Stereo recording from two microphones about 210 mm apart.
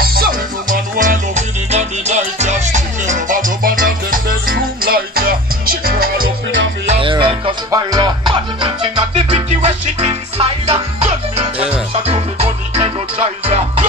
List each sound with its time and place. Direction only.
0.0 s music: 45° right (ahead or behind)
6.9 s music: 25° right (ahead or behind)